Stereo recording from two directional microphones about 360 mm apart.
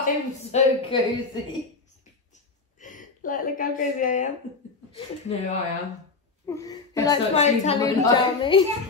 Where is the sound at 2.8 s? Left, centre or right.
Left.